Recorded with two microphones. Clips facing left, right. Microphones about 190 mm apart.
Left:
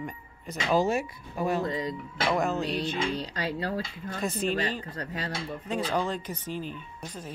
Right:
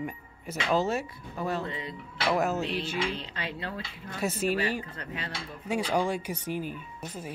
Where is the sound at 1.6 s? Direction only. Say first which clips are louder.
Left 6 dB; 40° left (ahead or behind).